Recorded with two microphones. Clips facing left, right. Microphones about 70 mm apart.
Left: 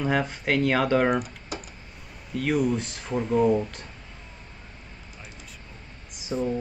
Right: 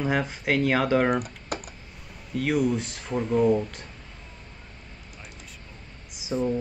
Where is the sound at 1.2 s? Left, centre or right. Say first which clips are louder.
Right 3 dB; right.